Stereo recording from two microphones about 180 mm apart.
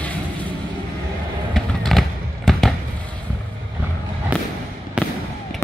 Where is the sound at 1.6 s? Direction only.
Centre (ahead or behind).